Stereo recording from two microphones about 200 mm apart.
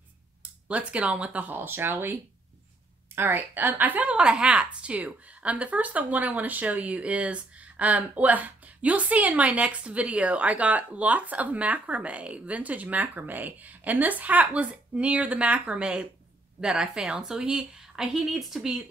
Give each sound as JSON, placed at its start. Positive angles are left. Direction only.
{"t": 0.4, "sound": "a woman's voice", "side_deg": -5}
{"t": 3.2, "sound": "a woman's voice", "side_deg": -10}